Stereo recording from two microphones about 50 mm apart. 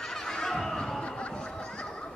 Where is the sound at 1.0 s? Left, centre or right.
Left.